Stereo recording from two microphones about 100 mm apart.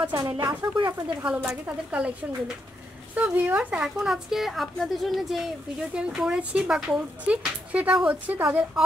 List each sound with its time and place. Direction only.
0.0 s speech: 40° right (ahead or behind)
1.2 s speech: 10° right (ahead or behind)